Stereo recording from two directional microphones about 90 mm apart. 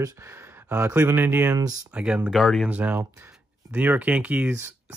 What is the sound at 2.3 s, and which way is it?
Speech, centre (ahead or behind).